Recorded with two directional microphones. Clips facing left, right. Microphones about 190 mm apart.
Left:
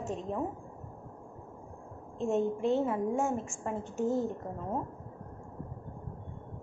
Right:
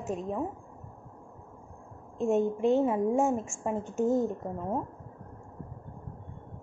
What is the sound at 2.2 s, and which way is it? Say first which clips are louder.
A woman's voice: right 3 dB; 15° right (ahead or behind).